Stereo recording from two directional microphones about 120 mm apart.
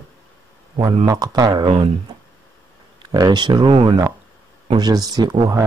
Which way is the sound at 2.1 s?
40° right (ahead or behind).